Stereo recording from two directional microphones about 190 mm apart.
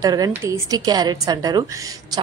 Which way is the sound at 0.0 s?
20° right (ahead or behind).